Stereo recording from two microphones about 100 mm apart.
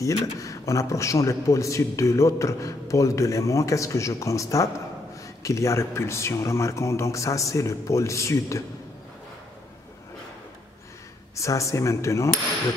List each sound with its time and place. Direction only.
0.0 s speech: 30° left (ahead or behind)
11.3 s speech: 30° left (ahead or behind)